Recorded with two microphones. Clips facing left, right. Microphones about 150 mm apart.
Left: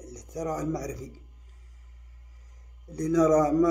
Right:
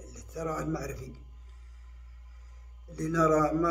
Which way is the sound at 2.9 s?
40° left (ahead or behind).